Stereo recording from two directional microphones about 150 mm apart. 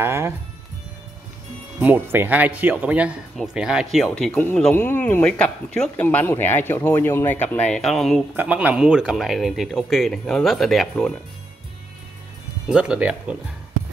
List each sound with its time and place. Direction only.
0.0 s speech: 15° right (ahead or behind)
1.8 s speech: 10° right (ahead or behind)
4.3 s speech: 15° left (ahead or behind)
12.6 s speech: 5° right (ahead or behind)